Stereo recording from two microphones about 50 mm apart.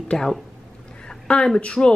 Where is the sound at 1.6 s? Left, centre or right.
Centre.